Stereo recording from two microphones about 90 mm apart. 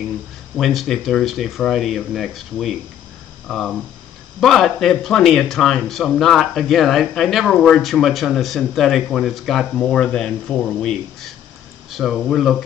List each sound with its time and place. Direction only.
0.6 s speech: centre (ahead or behind)